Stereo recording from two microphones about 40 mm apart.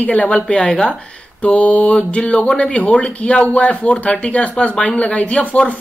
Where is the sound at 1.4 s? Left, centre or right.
Left.